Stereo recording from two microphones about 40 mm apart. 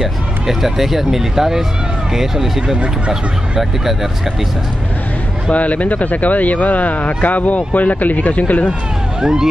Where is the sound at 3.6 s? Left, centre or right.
Centre.